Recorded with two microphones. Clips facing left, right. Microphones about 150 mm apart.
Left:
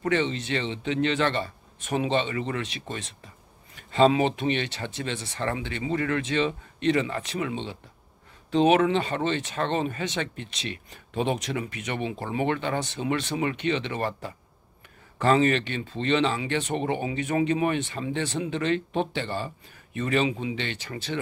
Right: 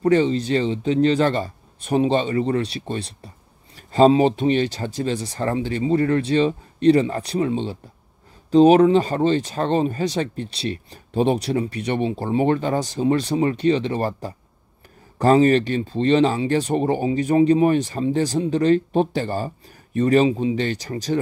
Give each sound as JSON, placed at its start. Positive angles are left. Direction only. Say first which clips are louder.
{"t": 0.0, "sound": "speech", "louder": "right 8 dB", "side_deg": -35}